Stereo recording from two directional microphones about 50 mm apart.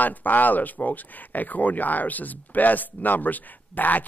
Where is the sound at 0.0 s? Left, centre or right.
Left.